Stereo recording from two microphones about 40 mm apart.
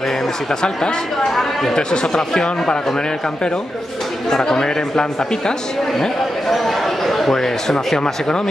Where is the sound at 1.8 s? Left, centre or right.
Centre.